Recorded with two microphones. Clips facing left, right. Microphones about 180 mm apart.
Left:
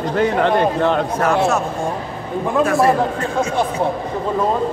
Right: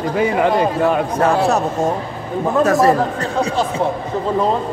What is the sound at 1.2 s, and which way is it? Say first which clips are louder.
A man's voice: right 3 dB; 35° right (ahead or behind).